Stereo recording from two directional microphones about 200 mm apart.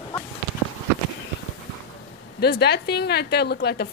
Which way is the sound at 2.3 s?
55° left (ahead or behind).